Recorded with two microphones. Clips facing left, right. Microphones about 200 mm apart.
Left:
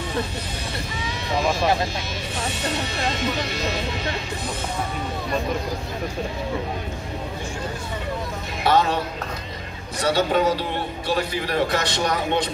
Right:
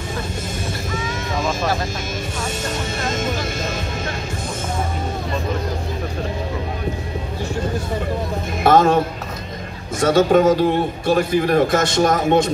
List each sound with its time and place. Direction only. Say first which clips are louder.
2.6 s speech: left 1 dB; 45° right (ahead or behind)
8.6 s a man's voice: right 6 dB; 45° right (ahead or behind)